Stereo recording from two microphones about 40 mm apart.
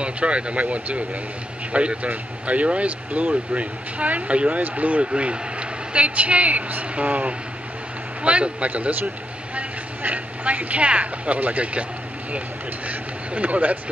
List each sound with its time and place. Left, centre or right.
0.0 s a man's voice: right
12.8 s speech: right